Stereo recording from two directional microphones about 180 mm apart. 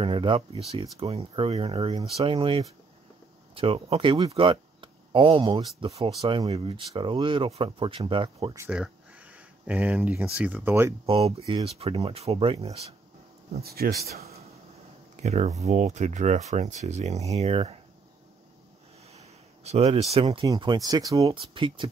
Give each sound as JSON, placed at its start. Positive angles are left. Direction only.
{"t": 0.0, "sound": "speech", "side_deg": -30}
{"t": 8.5, "sound": "speech", "side_deg": -5}
{"t": 11.1, "sound": "speech", "side_deg": -35}
{"t": 13.5, "sound": "speech", "side_deg": -60}
{"t": 15.2, "sound": "speech", "side_deg": -40}
{"t": 19.1, "sound": "a sound", "side_deg": -35}
{"t": 20.4, "sound": "speech", "side_deg": -25}